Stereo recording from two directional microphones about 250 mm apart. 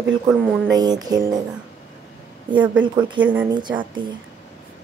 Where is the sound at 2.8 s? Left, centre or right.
Centre.